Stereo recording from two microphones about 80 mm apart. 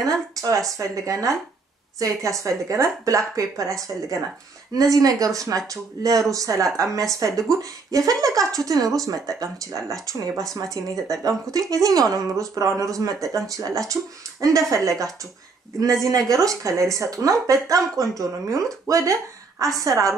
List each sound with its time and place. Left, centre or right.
0.0 s speech: right
4.7 s speech: right